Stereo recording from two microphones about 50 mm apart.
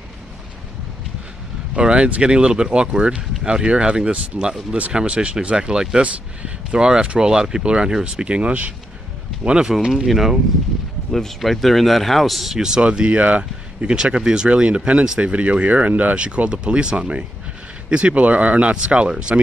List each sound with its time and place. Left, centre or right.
1.8 s speech: right
10.0 s speech: centre
12.8 s speech: right